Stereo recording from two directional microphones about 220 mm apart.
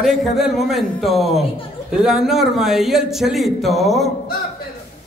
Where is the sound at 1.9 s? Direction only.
Centre (ahead or behind).